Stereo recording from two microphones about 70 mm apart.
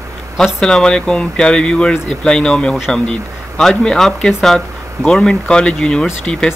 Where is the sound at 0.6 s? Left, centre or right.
Centre.